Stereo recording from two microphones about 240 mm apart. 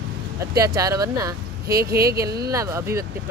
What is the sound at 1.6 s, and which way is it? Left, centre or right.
Speech, right.